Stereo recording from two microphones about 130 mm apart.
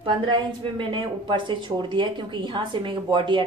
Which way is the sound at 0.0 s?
40° right (ahead or behind).